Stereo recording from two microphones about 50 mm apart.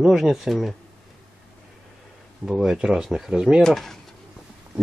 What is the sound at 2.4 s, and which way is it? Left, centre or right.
Speech, centre.